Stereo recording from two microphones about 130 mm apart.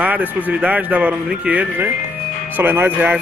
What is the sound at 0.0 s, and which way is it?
A man's voice, 10° right (ahead or behind).